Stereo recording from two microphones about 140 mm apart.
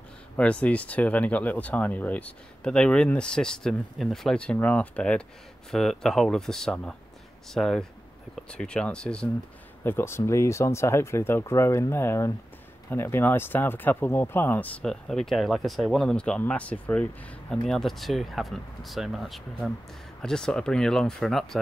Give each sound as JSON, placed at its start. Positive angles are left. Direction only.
{"t": 0.4, "sound": "speech", "side_deg": 10}
{"t": 9.8, "sound": "speech", "side_deg": 15}